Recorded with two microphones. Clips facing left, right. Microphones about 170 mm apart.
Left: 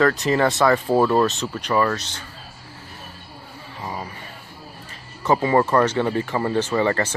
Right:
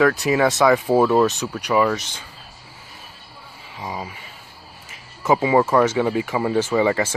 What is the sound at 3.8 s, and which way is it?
Speech, 15° right (ahead or behind).